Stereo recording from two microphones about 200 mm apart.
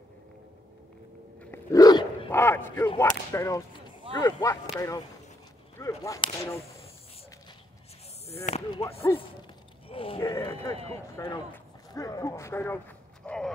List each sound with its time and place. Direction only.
1.4 s dog: 15° left (ahead or behind)
2.3 s a sound: 10° left (ahead or behind)
3.0 s whip: 15° left (ahead or behind)
8.5 s speech: 30° left (ahead or behind)
9.8 s a sound: 25° left (ahead or behind)
10.3 s whip: 10° left (ahead or behind)
10.7 s speech: 30° right (ahead or behind)
11.1 s speech: 15° left (ahead or behind)